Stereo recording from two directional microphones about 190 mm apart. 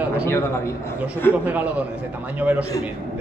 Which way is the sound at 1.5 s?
10° right (ahead or behind).